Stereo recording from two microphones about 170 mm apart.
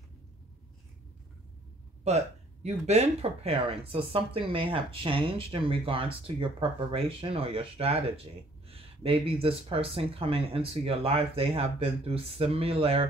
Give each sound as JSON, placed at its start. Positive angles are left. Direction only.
{"t": 2.0, "sound": "speech", "side_deg": -40}